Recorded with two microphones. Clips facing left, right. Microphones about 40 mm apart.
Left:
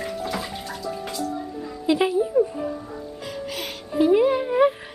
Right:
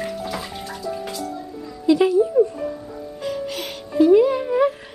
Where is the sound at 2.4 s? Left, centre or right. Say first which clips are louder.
Right 1 dB; left.